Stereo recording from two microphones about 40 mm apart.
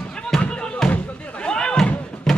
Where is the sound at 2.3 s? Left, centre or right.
Centre.